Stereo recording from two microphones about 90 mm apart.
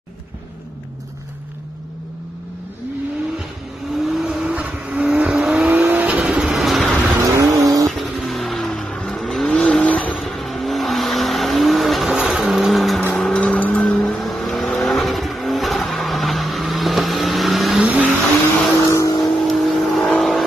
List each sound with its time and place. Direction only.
3.9 s vehicle: 5° right (ahead or behind)
5.9 s train: 15° right (ahead or behind)
7.2 s vehicle: 35° right (ahead or behind)
7.9 s vehicle: centre (ahead or behind)
10.1 s vehicle: centre (ahead or behind); by 13.8 s 15° left (ahead or behind)
14.0 s vehicle: 5° left (ahead or behind)
17.8 s vehicle: 15° right (ahead or behind)
18.9 s vehicle: 35° left (ahead or behind)
19.4 s vehicle: centre (ahead or behind)